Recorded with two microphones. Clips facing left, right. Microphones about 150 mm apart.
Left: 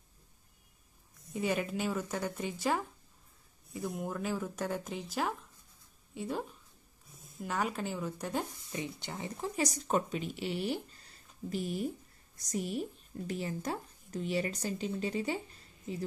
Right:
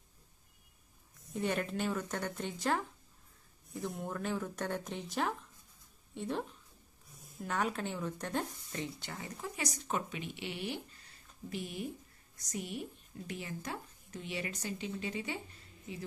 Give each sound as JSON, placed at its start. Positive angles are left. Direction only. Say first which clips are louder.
{"t": 1.3, "sound": "speech", "louder": "left 2 dB", "side_deg": 5}